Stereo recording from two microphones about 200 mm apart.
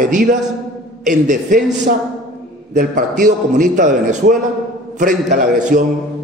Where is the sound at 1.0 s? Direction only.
40° right (ahead or behind).